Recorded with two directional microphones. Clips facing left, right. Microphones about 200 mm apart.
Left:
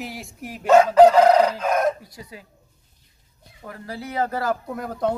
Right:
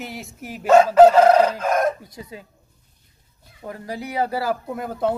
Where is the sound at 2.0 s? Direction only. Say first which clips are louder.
Right 3 dB; 20° right (ahead or behind).